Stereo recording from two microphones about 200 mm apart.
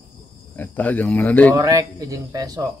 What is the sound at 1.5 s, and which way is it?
A man's voice, 15° right (ahead or behind).